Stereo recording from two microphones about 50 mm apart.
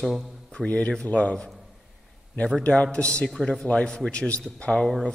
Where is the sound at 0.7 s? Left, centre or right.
Left.